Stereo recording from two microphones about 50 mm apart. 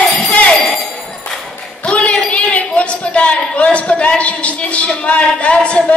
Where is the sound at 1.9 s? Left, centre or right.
Left.